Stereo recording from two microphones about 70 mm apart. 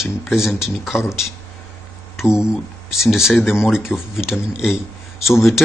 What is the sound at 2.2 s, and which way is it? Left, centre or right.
Speech, centre.